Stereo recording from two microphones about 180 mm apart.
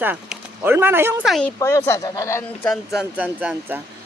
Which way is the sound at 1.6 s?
15° left (ahead or behind).